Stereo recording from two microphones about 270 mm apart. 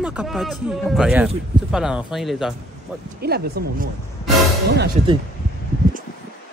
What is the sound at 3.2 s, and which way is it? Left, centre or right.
Speech, right.